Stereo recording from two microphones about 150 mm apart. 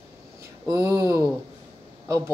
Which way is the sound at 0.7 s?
20° right (ahead or behind).